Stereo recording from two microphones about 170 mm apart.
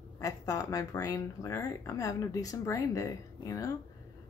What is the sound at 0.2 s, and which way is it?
Speech, 20° left (ahead or behind).